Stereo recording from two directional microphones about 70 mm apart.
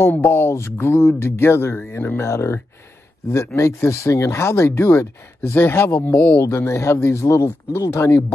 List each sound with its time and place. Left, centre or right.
0.0 s speech: left
6.4 s speech: left